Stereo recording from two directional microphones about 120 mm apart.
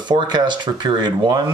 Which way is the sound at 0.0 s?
40° right (ahead or behind).